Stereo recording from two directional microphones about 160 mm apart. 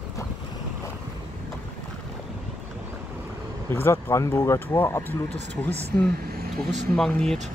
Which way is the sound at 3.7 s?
15° left (ahead or behind).